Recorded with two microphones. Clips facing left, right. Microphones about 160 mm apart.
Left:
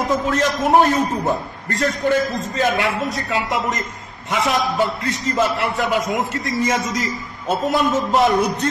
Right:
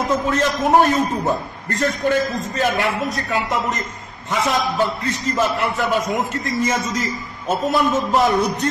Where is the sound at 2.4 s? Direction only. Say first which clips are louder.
Left 1 dB; 20° left (ahead or behind).